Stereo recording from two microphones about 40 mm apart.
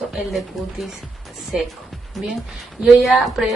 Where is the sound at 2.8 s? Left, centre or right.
Centre.